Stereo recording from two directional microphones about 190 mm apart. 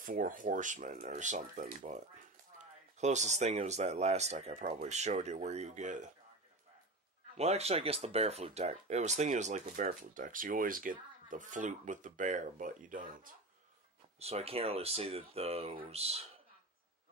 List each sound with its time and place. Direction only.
0.0 s speech: 45° right (ahead or behind)
7.3 s speech: 35° right (ahead or behind)
14.2 s speech: 30° right (ahead or behind)